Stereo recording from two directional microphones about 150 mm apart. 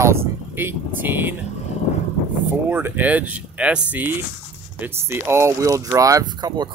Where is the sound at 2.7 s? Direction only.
15° right (ahead or behind).